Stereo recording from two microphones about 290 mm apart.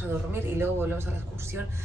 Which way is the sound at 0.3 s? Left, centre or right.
Centre.